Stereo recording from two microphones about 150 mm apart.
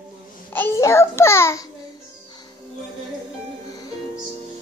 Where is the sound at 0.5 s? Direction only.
15° left (ahead or behind).